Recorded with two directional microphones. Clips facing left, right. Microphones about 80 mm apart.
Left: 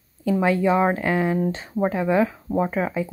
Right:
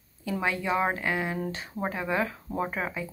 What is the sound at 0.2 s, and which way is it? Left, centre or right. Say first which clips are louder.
Speech: left 10 dB; left.